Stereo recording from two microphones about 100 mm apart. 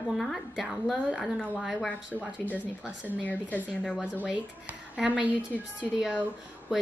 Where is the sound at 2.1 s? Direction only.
15° right (ahead or behind).